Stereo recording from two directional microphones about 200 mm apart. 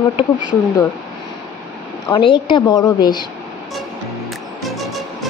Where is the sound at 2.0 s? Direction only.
25° left (ahead or behind).